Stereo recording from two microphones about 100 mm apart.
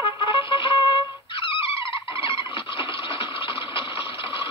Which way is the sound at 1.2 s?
60° left (ahead or behind).